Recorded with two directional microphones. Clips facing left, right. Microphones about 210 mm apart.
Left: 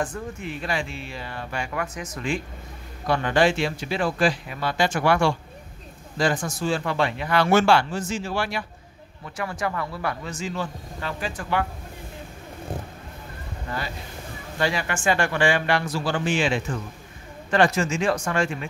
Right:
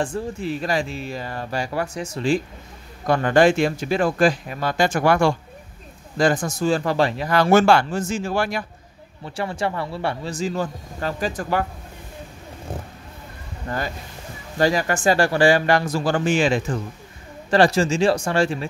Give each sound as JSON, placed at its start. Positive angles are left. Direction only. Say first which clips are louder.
{"t": 0.0, "sound": "speech", "louder": "right 5 dB", "side_deg": -30}
{"t": 3.1, "sound": "speech", "louder": "right 5 dB", "side_deg": -45}
{"t": 9.2, "sound": "speech", "louder": "right 4 dB", "side_deg": -30}
{"t": 13.7, "sound": "speech", "louder": "right 5 dB", "side_deg": -45}